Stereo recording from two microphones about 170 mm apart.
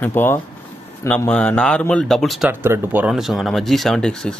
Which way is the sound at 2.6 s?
15° right (ahead or behind).